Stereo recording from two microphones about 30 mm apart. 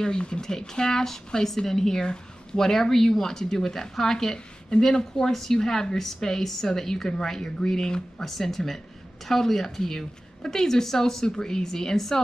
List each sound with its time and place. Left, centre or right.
0.0 s speech: left